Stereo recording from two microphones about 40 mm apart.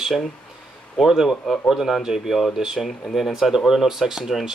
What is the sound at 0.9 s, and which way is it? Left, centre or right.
Speech, centre.